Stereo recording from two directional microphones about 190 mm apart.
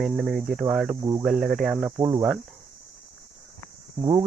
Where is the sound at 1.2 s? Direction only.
Centre (ahead or behind).